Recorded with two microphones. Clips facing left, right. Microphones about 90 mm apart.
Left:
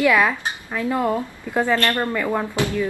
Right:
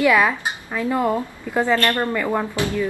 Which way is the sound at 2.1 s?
Centre (ahead or behind).